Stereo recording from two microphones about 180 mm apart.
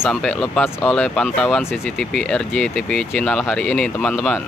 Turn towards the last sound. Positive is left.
turn(degrees=5)  # may be behind; listen again after turning